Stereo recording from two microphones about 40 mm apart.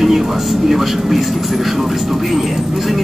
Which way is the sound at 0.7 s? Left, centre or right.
Centre.